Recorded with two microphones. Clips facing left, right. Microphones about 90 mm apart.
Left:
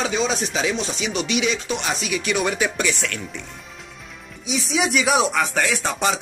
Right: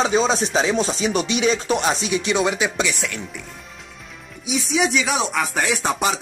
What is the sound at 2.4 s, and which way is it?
Speech, 20° right (ahead or behind).